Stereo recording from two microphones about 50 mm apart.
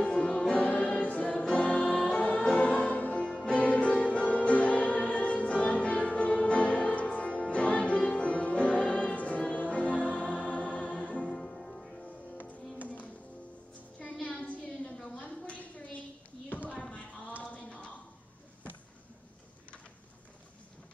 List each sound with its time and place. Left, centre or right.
0.0 s music: left
1.5 s choir: left
2.0 s music: left
11.2 s music: centre
12.1 s music: left
15.1 s a sound: left